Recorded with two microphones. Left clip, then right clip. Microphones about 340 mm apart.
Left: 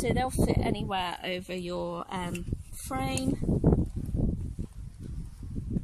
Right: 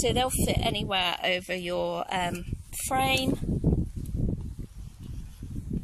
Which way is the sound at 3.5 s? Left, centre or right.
Left.